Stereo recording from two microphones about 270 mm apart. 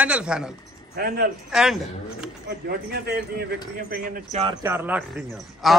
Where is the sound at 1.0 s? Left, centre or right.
Right.